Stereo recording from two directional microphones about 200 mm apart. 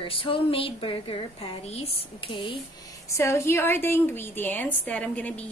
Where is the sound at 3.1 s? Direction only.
15° left (ahead or behind).